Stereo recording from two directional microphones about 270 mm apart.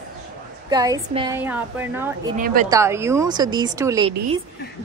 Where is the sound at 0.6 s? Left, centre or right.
Centre.